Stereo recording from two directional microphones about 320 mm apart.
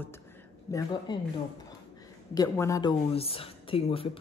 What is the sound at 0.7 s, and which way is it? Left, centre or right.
Speech, centre.